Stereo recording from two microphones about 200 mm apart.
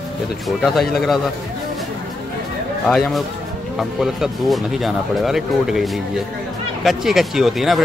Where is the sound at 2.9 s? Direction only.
Centre (ahead or behind).